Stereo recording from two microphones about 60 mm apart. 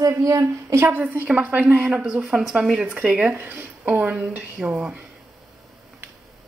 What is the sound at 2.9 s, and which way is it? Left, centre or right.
Speech, right.